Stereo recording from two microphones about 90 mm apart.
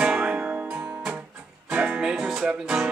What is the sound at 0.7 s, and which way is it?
Music, 25° right (ahead or behind).